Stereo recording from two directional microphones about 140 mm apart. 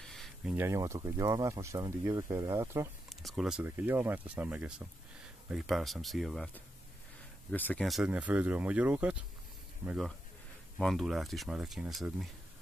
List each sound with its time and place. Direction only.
0.0 s a sound: 5° left (ahead or behind)
0.6 s speech: 20° right (ahead or behind)
3.1 s speech: centre (ahead or behind)
3.6 s speech: 15° right (ahead or behind); by 7.8 s 15° left (ahead or behind)
7.8 s speech: centre (ahead or behind)
8.1 s speech: 10° right (ahead or behind)
10.8 s speech: centre (ahead or behind)